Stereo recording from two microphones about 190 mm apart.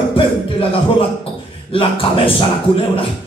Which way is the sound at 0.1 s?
30° left (ahead or behind).